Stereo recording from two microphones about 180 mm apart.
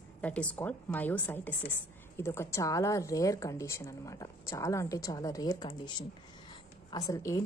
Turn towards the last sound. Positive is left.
turn(degrees=15)  # may be behind; listen again after turning